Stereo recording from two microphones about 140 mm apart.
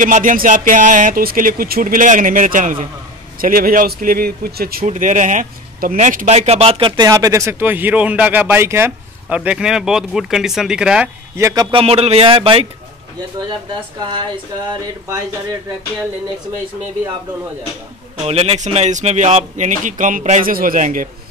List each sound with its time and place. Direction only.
0.0 s speech: 70° right (ahead or behind)
3.3 s speech: 90° right; by 6.9 s 45° right (ahead or behind)
7.0 s speech: 25° right (ahead or behind); by 11.1 s 5° right (ahead or behind)
11.3 s a man's voice: 25° right (ahead or behind)
11.8 s speech: 45° right (ahead or behind)
18.2 s speech: 45° right (ahead or behind); by 21.1 s 70° right (ahead or behind)